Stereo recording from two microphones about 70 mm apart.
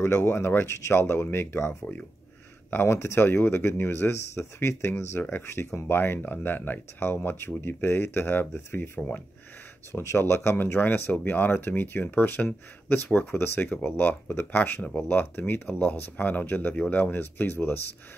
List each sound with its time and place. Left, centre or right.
0.0 s speech: left